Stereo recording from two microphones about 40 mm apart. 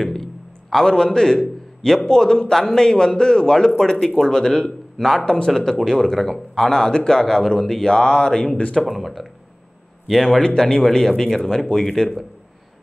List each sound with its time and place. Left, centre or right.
0.0 s a sound: centre
0.8 s speech: centre
5.2 s speech: left
8.8 s speech: centre